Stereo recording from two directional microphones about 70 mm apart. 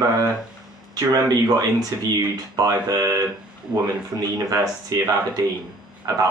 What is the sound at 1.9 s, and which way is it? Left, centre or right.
Speech, right.